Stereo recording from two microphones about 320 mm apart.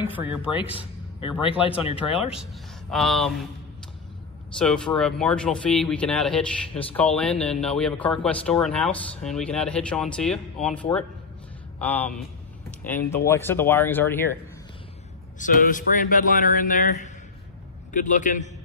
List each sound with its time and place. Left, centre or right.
1.8 s speech: centre
2.3 s speech: centre
4.6 s speech: centre
15.3 s a man's voice: left